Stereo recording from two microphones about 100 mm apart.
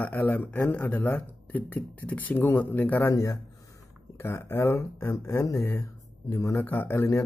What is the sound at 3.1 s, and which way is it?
Speech, 35° left (ahead or behind).